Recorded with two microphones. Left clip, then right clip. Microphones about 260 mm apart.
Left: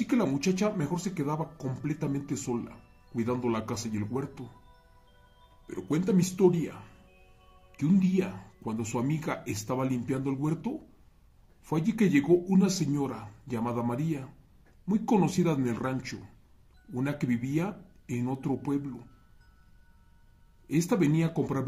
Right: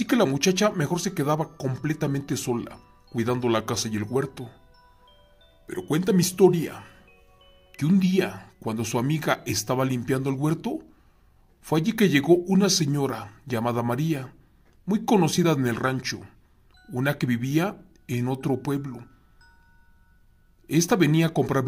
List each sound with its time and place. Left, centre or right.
0.0 s speech: right
5.7 s speech: right
20.6 s speech: right